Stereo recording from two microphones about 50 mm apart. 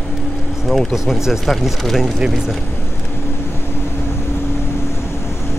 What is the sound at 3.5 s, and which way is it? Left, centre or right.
Vehicle, left.